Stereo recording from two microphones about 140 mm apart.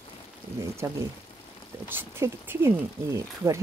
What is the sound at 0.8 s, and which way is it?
Speech, 20° right (ahead or behind).